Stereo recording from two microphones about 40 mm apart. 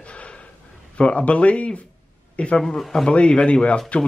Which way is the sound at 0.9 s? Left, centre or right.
Left.